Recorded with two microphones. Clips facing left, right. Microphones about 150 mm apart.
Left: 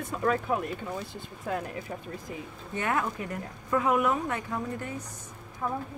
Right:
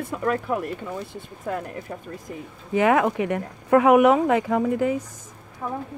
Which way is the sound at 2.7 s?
90° right.